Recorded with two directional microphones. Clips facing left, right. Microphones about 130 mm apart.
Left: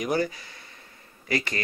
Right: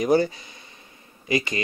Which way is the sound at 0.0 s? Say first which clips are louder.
Right 6 dB; 30° right (ahead or behind).